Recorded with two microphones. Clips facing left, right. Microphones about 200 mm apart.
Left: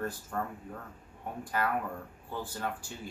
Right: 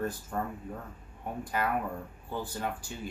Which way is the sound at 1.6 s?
15° right (ahead or behind).